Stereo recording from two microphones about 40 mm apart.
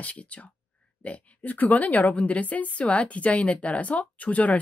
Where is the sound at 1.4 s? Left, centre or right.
Left.